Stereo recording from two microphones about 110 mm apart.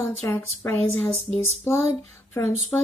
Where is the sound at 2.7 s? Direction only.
25° left (ahead or behind).